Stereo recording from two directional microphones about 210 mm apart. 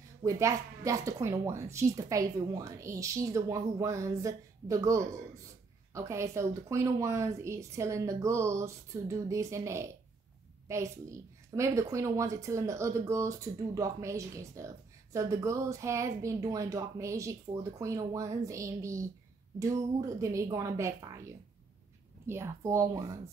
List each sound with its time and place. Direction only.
0.2 s a woman's voice: 15° right (ahead or behind)